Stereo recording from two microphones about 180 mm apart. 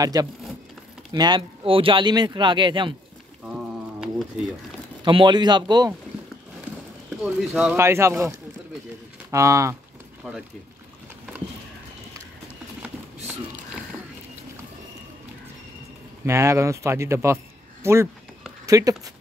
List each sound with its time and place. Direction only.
0.0 s speech: 20° right (ahead or behind)
3.4 s a sound: 5° right (ahead or behind)
5.0 s speech: 25° right (ahead or behind)
7.3 s speech: 5° right (ahead or behind)
10.2 s speech: centre (ahead or behind)
16.3 s speech: 15° right (ahead or behind)